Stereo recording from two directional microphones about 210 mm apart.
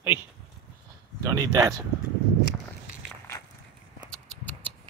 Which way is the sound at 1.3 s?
15° right (ahead or behind).